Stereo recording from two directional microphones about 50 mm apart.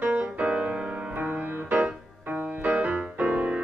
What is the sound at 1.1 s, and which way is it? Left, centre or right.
Music, right.